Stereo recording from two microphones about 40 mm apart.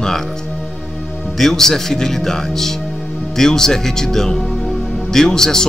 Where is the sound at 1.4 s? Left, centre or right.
Centre.